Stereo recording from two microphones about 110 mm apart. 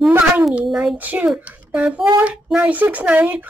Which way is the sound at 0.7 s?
Centre (ahead or behind).